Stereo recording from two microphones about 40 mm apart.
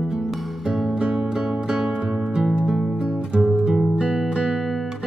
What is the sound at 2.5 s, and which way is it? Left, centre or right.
Music, centre.